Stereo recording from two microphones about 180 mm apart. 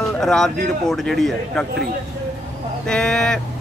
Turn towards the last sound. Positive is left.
turn(degrees=5)  # may be behind; listen again after turning